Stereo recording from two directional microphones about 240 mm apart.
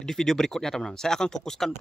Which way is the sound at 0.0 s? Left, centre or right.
Centre.